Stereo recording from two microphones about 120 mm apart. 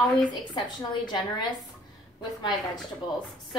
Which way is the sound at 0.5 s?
40° left (ahead or behind).